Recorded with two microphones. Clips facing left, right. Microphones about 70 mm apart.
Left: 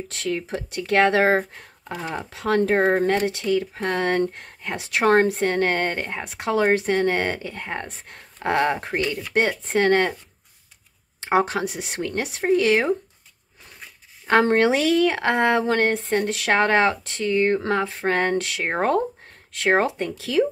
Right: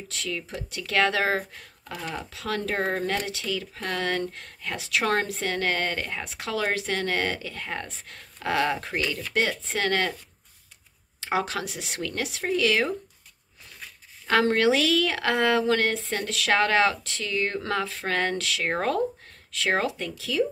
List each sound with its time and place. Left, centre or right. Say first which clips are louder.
0.1 s speech: left 6 dB; left
4.7 s speech: left 7 dB; left
11.3 s speech: left 7 dB; left
14.2 s speech: left 4 dB; left
20.2 s speech: left 5 dB; left